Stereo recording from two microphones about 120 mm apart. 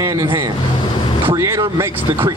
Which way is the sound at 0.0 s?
25° right (ahead or behind).